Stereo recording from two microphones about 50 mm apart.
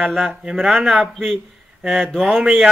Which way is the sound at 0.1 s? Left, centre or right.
Centre.